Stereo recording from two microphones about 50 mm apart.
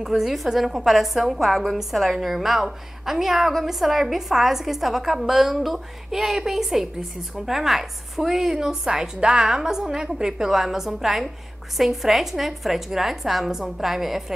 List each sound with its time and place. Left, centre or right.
0.0 s a woman's voice: centre